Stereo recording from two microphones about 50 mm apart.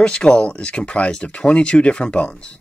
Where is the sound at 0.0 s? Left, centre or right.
Centre.